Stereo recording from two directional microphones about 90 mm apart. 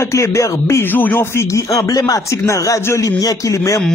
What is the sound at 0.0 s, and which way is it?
Speech, 35° left (ahead or behind).